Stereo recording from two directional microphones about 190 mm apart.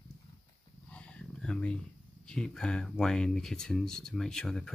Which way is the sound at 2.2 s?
5° left (ahead or behind).